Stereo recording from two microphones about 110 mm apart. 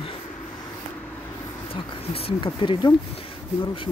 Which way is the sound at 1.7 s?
55° left (ahead or behind).